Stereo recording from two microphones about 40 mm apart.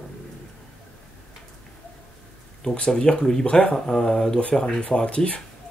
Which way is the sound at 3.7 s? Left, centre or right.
Centre.